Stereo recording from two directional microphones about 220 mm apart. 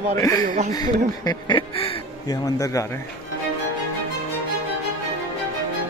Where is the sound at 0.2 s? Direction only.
15° left (ahead or behind).